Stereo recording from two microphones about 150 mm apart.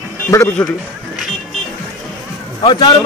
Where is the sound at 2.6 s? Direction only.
30° left (ahead or behind).